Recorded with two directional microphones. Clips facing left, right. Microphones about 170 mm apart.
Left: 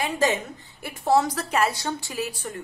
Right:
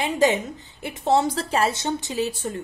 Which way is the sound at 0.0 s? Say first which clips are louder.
Right 3 dB; 20° right (ahead or behind).